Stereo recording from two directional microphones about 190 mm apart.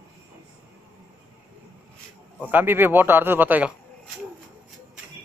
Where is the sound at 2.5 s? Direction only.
10° right (ahead or behind).